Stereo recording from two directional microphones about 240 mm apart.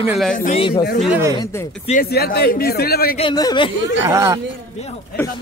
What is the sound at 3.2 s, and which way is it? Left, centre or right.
Speech, centre.